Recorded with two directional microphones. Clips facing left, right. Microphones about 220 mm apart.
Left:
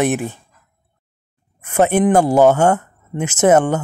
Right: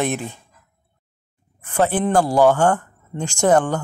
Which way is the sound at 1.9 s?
20° left (ahead or behind).